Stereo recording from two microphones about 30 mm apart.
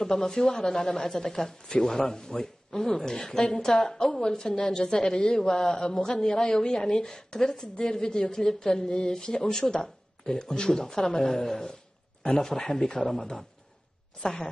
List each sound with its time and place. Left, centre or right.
0.0 s a man's voice: centre